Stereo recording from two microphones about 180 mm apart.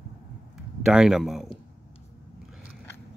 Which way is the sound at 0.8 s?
5° right (ahead or behind).